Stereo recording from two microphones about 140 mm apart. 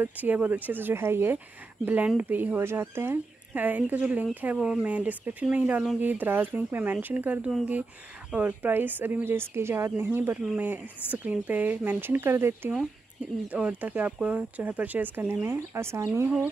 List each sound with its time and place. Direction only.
0.0 s speech: 10° right (ahead or behind)